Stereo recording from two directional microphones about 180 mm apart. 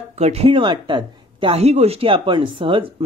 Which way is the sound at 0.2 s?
35° right (ahead or behind).